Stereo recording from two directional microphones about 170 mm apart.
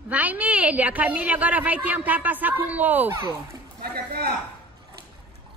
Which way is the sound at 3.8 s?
65° right (ahead or behind).